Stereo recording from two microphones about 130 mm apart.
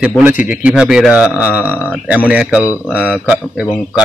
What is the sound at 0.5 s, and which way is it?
Speech, 10° right (ahead or behind).